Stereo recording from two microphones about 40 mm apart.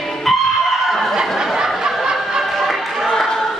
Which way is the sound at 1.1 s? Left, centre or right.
Centre.